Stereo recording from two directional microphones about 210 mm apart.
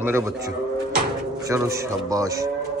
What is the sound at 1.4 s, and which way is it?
Speech, 15° right (ahead or behind).